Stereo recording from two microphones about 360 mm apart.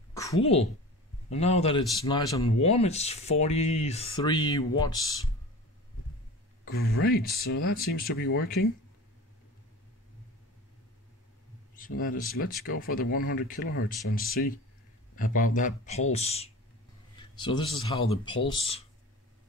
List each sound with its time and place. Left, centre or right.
0.1 s a sound: centre
1.3 s speech: centre
6.6 s speech: left
12.4 s speech: left